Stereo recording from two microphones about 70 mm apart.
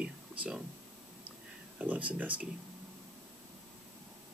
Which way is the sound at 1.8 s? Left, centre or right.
Centre.